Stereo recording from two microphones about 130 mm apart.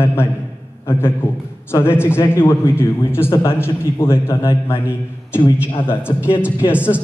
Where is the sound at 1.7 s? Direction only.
20° left (ahead or behind).